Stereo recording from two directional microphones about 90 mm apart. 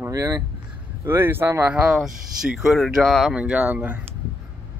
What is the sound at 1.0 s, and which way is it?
Speech, 25° right (ahead or behind).